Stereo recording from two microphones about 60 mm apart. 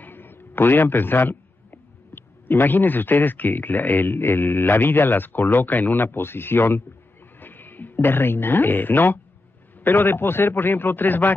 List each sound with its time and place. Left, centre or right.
0.0 s a man's voice: left